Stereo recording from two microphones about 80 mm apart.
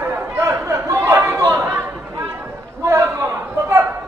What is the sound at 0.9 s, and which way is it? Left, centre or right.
Chatter, right.